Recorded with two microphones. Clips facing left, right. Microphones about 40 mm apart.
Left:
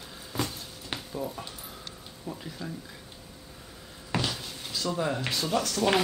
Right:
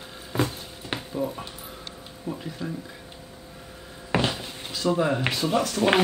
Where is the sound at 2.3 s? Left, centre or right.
Right.